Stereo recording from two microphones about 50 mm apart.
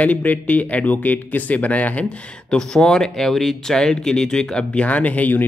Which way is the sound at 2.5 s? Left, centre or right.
Centre.